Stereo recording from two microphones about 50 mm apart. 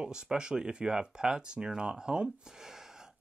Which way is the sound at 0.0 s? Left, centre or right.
Centre.